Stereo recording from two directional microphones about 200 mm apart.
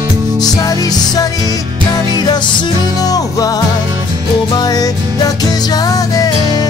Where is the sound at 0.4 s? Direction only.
15° left (ahead or behind).